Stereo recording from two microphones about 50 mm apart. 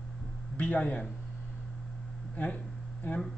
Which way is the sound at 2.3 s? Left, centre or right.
Left.